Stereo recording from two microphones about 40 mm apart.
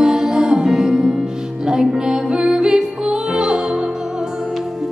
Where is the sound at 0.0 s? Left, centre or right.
Centre.